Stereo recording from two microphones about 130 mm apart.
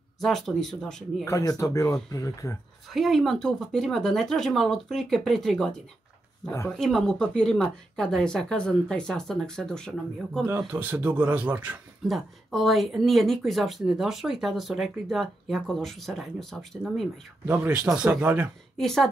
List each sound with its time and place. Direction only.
0.2 s speech: 5° left (ahead or behind)
1.2 s speech: 25° left (ahead or behind)
2.9 s speech: centre (ahead or behind)
6.8 s speech: 5° left (ahead or behind)
10.7 s speech: 10° right (ahead or behind)
12.1 s speech: centre (ahead or behind)
17.5 s speech: 10° right (ahead or behind)
18.8 s speech: 5° left (ahead or behind)